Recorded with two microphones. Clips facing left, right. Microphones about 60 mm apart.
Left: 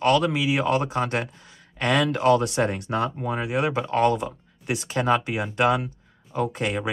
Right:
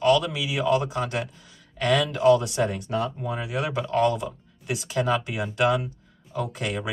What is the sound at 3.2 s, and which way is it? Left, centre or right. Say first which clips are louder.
Speech: left 4 dB; left.